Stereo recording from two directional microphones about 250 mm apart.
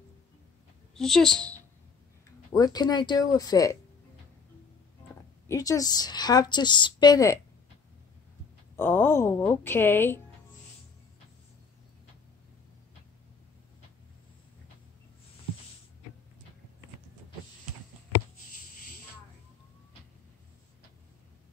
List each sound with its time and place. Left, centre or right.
0.9 s a woman's voice: centre
2.5 s a woman's voice: centre
5.5 s a woman's voice: centre
8.7 s a woman's voice: centre